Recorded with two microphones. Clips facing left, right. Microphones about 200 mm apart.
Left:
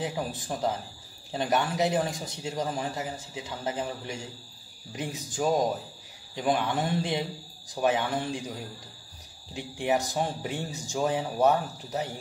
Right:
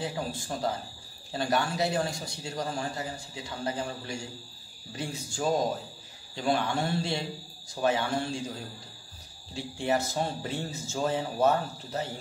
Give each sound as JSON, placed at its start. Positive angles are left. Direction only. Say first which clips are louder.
{"t": 0.0, "sound": "a man's voice", "louder": "left 1 dB", "side_deg": 20}